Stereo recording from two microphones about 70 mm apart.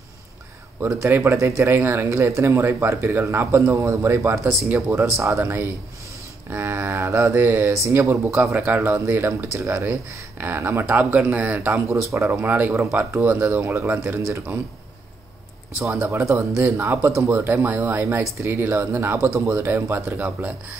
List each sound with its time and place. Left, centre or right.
1.0 s a man's voice: right
2.0 s a man's voice: right
6.5 s mantra: right
7.3 s speech: right
8.0 s a man's voice: right
8.5 s speech: right
11.7 s speech: right
12.4 s speech: right
13.5 s speech: right
16.0 s speech: right